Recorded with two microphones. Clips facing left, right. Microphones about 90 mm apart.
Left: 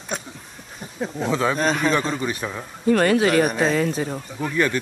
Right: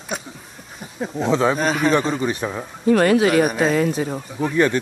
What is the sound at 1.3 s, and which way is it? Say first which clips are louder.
Speech: right 4 dB; 25° right (ahead or behind).